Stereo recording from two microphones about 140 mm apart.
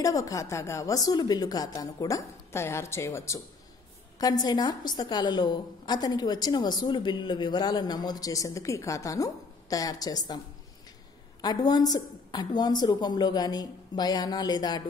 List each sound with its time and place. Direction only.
0.0 s a woman's voice: 25° left (ahead or behind)
11.4 s a woman's voice: 30° left (ahead or behind)